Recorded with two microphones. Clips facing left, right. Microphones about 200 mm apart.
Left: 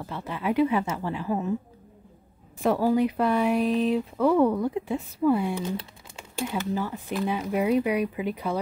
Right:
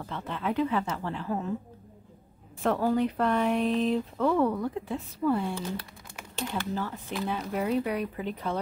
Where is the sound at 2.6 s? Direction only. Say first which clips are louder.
Left 3 dB; 10° left (ahead or behind).